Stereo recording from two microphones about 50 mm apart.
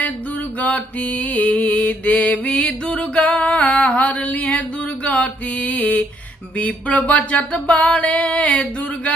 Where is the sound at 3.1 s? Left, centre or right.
Left.